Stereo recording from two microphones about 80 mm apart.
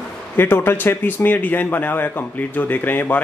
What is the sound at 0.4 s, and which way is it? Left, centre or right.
Speech, left.